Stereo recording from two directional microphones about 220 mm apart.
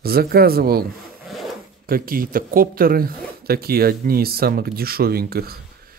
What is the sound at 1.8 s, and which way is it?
Speech, 40° right (ahead or behind).